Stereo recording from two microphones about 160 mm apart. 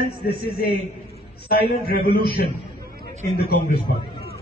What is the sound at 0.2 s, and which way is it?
Speech, 75° left (ahead or behind).